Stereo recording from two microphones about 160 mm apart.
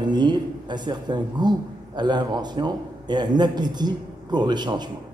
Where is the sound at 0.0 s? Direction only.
25° right (ahead or behind).